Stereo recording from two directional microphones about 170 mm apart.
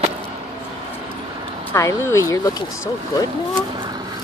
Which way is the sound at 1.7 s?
15° left (ahead or behind).